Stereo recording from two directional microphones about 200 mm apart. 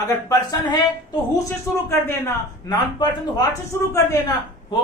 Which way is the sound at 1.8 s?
10° left (ahead or behind).